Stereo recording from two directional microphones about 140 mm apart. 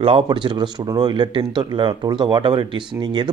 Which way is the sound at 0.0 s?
40° right (ahead or behind).